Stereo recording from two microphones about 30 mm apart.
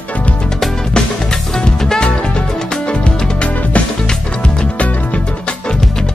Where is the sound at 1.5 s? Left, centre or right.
Left.